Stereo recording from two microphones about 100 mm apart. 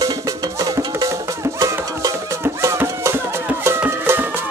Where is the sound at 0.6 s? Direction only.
35° right (ahead or behind).